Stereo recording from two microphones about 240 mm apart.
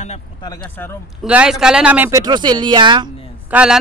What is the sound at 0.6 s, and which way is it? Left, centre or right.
Speech, centre.